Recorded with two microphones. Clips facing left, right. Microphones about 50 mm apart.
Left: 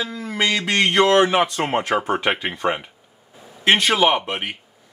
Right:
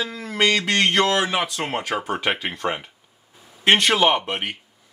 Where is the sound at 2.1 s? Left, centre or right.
Centre.